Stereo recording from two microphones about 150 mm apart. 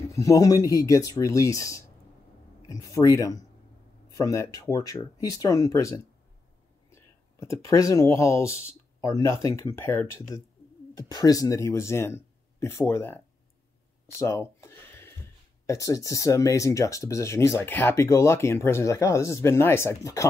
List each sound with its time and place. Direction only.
0.1 s speech: 20° left (ahead or behind)
14.0 s a sound: 20° left (ahead or behind)
15.6 s speech: 20° left (ahead or behind)